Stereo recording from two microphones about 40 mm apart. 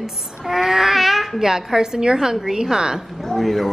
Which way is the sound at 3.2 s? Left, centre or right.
Centre.